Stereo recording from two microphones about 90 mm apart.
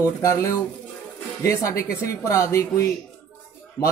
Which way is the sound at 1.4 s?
30° left (ahead or behind).